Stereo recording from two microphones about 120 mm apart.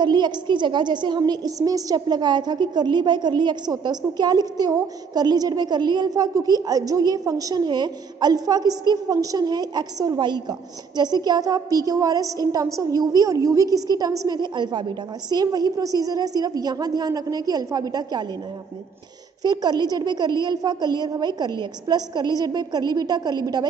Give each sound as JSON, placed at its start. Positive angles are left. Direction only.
{"t": 0.0, "sound": "a woman's voice", "side_deg": -40}
{"t": 19.4, "sound": "a woman's voice", "side_deg": -35}